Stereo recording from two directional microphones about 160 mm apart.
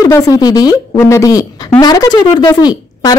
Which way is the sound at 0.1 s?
20° left (ahead or behind).